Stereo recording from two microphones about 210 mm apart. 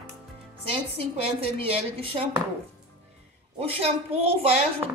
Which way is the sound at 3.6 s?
30° right (ahead or behind).